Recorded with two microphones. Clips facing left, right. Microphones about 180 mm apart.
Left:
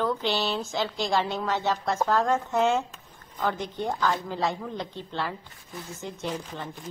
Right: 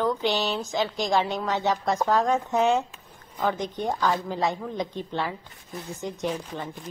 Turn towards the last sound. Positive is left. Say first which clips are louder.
# right 3 dB
turn(degrees=-15)  # may be behind; listen again after turning